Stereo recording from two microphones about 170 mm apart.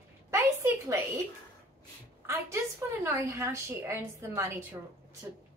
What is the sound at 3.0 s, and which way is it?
A woman's voice, 15° right (ahead or behind).